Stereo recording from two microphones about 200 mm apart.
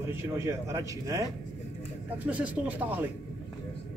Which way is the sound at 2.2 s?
5° right (ahead or behind).